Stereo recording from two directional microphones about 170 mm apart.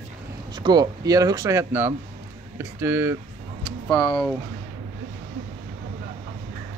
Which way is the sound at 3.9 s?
25° left (ahead or behind).